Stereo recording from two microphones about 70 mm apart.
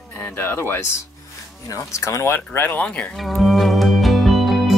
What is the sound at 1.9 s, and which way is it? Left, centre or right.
Speech, left.